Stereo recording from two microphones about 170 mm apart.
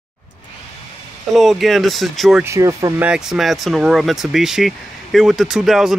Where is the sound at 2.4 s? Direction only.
20° right (ahead or behind).